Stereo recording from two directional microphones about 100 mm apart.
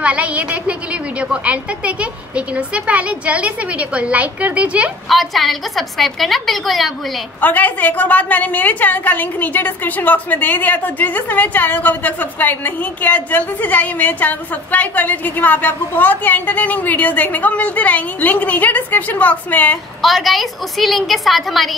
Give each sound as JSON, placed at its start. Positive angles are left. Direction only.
{"t": 0.0, "sound": "a woman's voice", "side_deg": -15}
{"t": 5.0, "sound": "a woman's voice", "side_deg": 0}
{"t": 7.3, "sound": "a woman's voice", "side_deg": 15}
{"t": 20.0, "sound": "a woman's voice", "side_deg": 0}